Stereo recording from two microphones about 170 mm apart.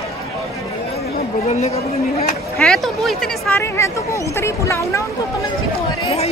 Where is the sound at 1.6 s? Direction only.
40° left (ahead or behind).